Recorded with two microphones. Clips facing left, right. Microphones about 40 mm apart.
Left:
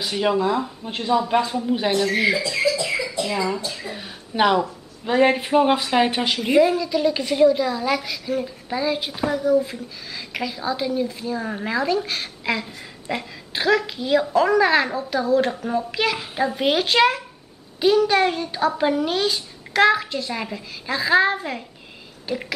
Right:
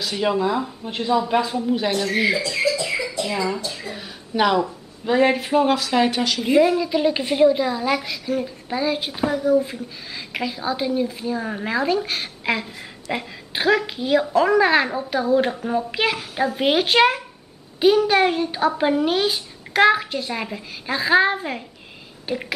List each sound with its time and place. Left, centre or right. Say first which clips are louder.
0.0 s speech: even; centre
5.8 s speech: even; centre
6.8 s speech: right 1 dB; centre